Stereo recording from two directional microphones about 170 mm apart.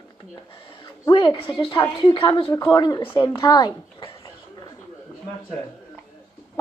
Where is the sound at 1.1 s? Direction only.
25° left (ahead or behind).